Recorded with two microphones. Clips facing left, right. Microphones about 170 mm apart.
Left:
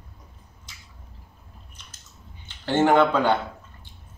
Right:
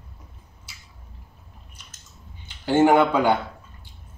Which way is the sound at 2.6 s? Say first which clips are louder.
Right 2 dB; 10° right (ahead or behind).